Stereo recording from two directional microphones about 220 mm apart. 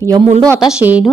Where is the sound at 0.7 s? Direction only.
5° right (ahead or behind).